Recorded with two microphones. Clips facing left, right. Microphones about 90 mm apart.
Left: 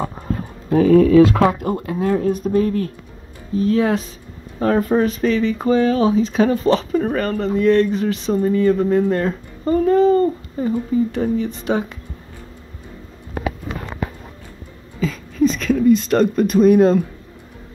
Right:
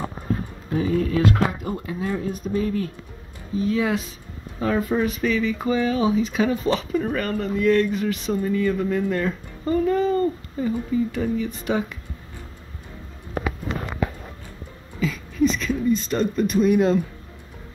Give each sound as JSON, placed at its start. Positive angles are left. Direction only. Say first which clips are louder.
{"t": 0.7, "sound": "speech", "louder": "left 10 dB", "side_deg": 60}
{"t": 1.6, "sound": "speech", "louder": "left 7 dB", "side_deg": 50}
{"t": 15.0, "sound": "a sound", "louder": "left 3 dB", "side_deg": 40}